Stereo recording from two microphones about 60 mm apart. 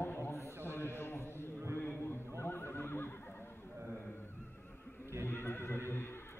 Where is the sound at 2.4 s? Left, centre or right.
Left.